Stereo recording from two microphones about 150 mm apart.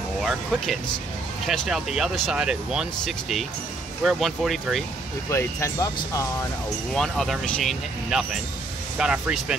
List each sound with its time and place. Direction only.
0.2 s speech: centre (ahead or behind)
5.3 s speech: 20° left (ahead or behind)
6.9 s speech: 5° left (ahead or behind)